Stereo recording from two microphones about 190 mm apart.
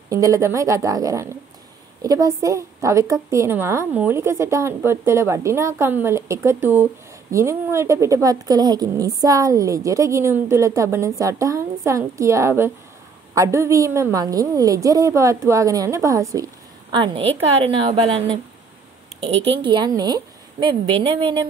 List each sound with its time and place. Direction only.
0.1 s a woman's voice: 15° right (ahead or behind)